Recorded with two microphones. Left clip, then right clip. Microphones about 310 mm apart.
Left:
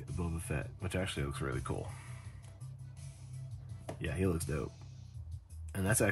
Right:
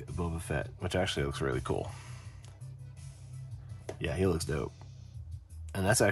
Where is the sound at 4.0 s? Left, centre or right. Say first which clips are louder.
Right 5 dB; centre.